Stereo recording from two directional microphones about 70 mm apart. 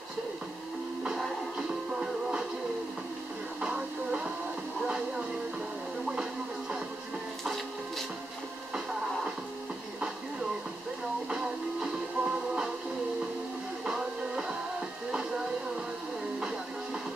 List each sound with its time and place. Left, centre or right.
1.9 s music: centre
3.6 s music: centre
4.8 s a sound: centre
11.2 s music: centre
13.8 s music: centre